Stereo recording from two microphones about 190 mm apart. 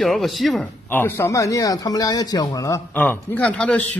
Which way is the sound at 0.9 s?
10° left (ahead or behind).